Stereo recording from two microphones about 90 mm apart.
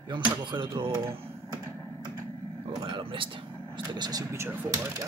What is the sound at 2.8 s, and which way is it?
Vehicle, 70° right (ahead or behind).